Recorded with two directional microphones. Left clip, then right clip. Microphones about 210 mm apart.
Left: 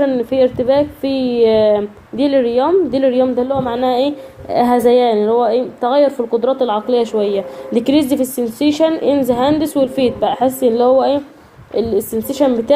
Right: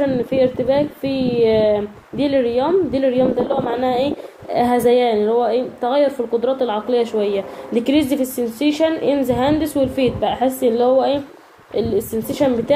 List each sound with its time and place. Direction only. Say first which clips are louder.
0.0 s a woman's voice: left 3 dB; 15° left (ahead or behind)